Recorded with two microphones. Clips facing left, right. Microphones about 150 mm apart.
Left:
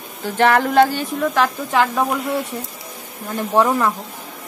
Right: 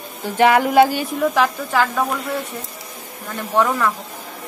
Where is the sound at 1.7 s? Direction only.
15° left (ahead or behind).